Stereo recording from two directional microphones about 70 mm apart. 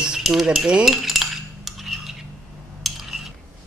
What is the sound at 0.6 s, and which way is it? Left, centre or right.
Cutlery, centre.